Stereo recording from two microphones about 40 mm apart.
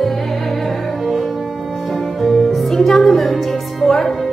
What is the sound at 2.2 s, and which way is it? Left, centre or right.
Music, centre.